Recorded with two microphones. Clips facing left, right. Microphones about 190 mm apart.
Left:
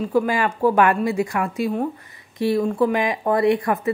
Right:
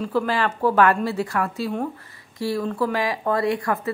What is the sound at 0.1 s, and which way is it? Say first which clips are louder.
Speech: left 3 dB; 15° left (ahead or behind).